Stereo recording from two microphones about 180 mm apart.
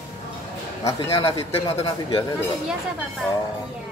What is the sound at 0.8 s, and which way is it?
Speech, 20° left (ahead or behind).